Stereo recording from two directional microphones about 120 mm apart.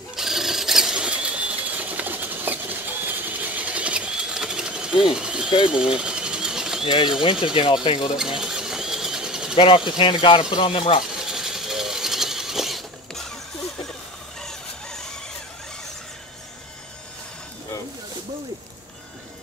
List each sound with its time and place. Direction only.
0.1 s sewing machine: 5° right (ahead or behind)
5.1 s a sound: 5° right (ahead or behind)
5.7 s pigeon: 5° right (ahead or behind)
7.5 s speech: 40° left (ahead or behind)
8.2 s sewing machine: 5° right (ahead or behind)
9.6 s speech: 45° left (ahead or behind)
11.1 s sewing machine: 5° right (ahead or behind)
14.4 s a sound: 5° left (ahead or behind)